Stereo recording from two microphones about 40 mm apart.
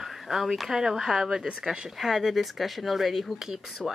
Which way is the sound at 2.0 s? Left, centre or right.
Centre.